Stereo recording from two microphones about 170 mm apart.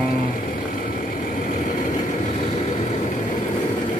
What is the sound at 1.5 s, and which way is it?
Vehicle, 50° left (ahead or behind).